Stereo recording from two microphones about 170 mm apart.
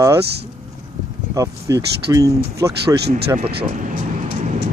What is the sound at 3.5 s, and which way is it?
Vehicle, 55° right (ahead or behind).